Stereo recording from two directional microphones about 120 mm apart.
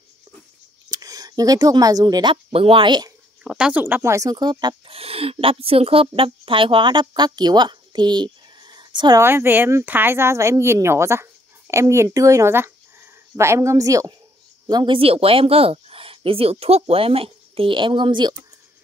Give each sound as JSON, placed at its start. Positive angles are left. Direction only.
{"t": 0.8, "sound": "speech", "side_deg": -30}
{"t": 2.5, "sound": "speech", "side_deg": -50}
{"t": 3.4, "sound": "speech", "side_deg": -5}
{"t": 3.8, "sound": "speech", "side_deg": -20}
{"t": 4.9, "sound": "speech", "side_deg": -55}
{"t": 9.2, "sound": "speech", "side_deg": -20}
{"t": 15.0, "sound": "speech", "side_deg": -50}